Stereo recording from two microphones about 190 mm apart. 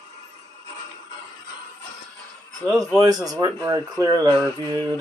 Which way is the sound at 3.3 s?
20° right (ahead or behind).